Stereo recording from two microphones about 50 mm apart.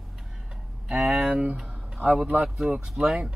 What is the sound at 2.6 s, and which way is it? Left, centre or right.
Speech, centre.